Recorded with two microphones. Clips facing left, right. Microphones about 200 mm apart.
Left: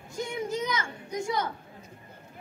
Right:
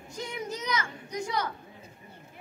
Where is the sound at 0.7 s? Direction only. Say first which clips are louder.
Even; 25° left (ahead or behind).